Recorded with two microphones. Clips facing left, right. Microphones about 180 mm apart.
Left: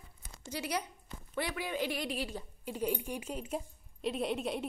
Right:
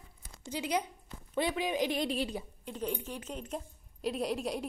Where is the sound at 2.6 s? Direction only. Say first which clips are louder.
Left 4 dB; 10° left (ahead or behind).